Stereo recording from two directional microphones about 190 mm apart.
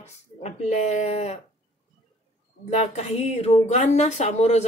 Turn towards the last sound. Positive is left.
turn(degrees=35)  # may be behind; listen again after turning